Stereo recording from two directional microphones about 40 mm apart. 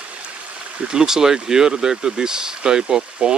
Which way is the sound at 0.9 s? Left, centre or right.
Centre.